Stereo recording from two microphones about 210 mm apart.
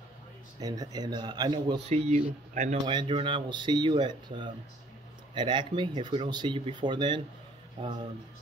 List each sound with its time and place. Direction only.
0.6 s speech: 20° right (ahead or behind)
1.9 s speech: 30° right (ahead or behind)
2.9 s speech: 20° right (ahead or behind)